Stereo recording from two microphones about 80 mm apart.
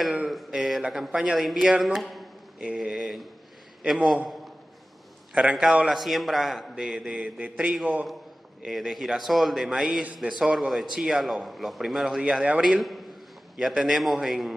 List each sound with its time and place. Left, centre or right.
0.3 s a man's voice: centre
2.6 s a man's voice: centre
5.3 s a man's voice: centre
8.6 s a man's voice: centre